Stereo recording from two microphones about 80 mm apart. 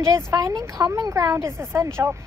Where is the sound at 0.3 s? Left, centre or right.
Right.